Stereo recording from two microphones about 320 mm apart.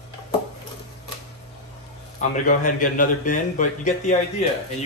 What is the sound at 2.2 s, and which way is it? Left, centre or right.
A man's voice, left.